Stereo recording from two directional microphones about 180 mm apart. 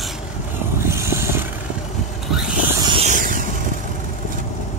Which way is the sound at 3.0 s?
45° right (ahead or behind).